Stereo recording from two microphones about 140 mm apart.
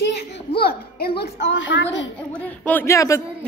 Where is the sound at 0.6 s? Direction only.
90° left.